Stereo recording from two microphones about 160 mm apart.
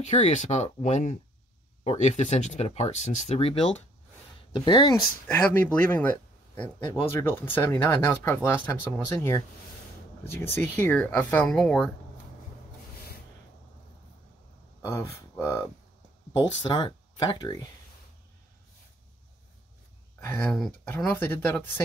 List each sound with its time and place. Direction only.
0.0 s speech: 45° left (ahead or behind)
4.5 s speech: 30° left (ahead or behind)
5.3 s speech: 15° left (ahead or behind)
10.5 s speech: 15° left (ahead or behind)
14.9 s speech: 20° left (ahead or behind)
16.6 s speech: 30° left (ahead or behind)
20.2 s a sound: 15° left (ahead or behind)
20.5 s speech: centre (ahead or behind)
20.9 s speech: 15° left (ahead or behind)